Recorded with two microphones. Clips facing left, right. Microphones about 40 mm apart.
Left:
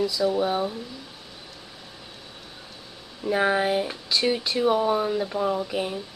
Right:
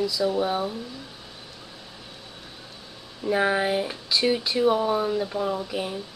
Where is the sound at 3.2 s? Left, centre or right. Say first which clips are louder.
Even; centre.